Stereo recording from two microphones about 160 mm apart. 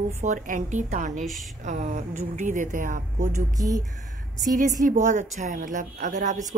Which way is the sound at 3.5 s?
20° right (ahead or behind).